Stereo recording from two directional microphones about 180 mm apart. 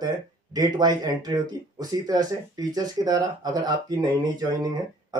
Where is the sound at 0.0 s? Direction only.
20° right (ahead or behind).